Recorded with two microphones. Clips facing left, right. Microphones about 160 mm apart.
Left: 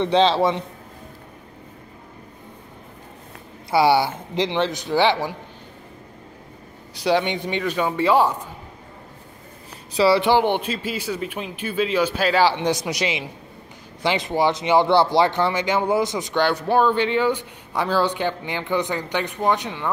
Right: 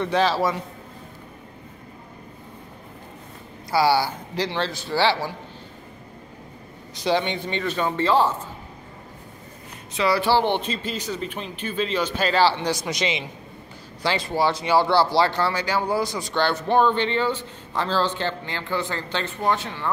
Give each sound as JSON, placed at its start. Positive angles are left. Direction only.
{"t": 0.0, "sound": "speech", "side_deg": 25}
{"t": 3.7, "sound": "speech", "side_deg": 20}
{"t": 7.0, "sound": "speech", "side_deg": 10}
{"t": 9.9, "sound": "speech", "side_deg": 30}
{"t": 10.2, "sound": "speech", "side_deg": 15}